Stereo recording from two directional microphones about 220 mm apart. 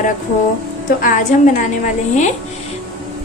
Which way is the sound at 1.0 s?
35° left (ahead or behind).